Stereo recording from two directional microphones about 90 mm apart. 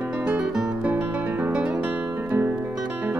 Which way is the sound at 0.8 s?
20° right (ahead or behind).